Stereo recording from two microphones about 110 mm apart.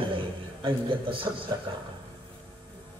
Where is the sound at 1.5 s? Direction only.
35° right (ahead or behind).